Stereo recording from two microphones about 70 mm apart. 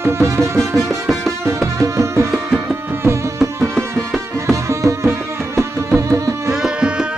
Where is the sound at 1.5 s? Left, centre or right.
Right.